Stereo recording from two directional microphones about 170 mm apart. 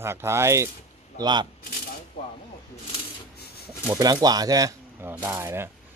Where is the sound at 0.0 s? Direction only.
15° right (ahead or behind).